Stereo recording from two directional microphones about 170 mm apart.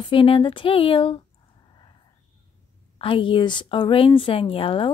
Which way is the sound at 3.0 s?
30° left (ahead or behind).